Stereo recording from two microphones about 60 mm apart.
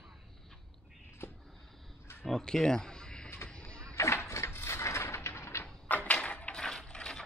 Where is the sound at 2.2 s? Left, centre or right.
Centre.